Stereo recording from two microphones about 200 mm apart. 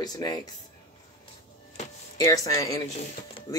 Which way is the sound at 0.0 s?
20° left (ahead or behind).